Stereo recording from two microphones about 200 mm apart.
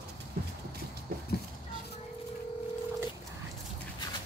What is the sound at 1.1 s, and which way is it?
Horse, 50° right (ahead or behind).